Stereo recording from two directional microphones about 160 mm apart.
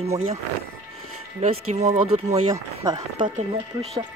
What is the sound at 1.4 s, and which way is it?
Speech, 45° right (ahead or behind).